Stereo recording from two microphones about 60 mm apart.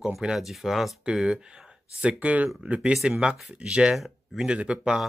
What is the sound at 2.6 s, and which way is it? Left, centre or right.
Speech, centre.